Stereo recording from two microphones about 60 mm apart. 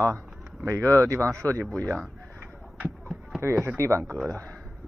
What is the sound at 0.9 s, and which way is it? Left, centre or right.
Speech, right.